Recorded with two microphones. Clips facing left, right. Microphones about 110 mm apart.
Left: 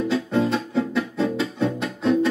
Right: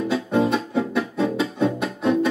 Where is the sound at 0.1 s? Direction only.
15° right (ahead or behind).